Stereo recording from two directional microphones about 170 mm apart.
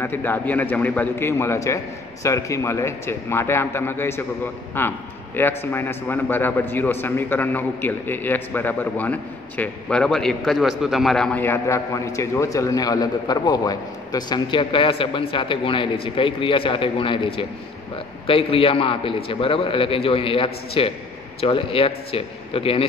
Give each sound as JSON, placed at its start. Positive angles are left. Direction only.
{"t": 0.0, "sound": "a man's voice", "side_deg": 10}